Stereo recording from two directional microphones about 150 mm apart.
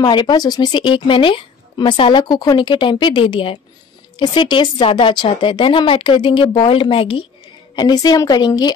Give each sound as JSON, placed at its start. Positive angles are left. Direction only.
{"t": 0.0, "sound": "a woman's voice", "side_deg": 30}